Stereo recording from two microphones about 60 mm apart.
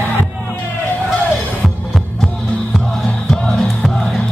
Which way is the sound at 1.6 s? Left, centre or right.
Centre.